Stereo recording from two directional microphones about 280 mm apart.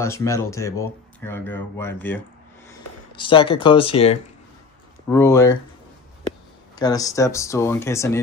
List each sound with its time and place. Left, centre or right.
0.0 s speech: centre
3.2 s speech: centre
6.7 s speech: centre